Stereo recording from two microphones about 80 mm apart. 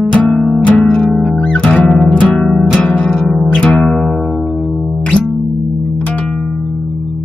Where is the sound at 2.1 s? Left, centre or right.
Centre.